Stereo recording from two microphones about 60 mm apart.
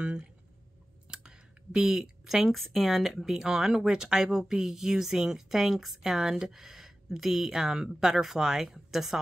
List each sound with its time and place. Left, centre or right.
0.0 s speech: centre